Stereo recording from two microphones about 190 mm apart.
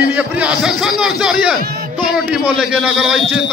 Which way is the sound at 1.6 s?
55° right (ahead or behind).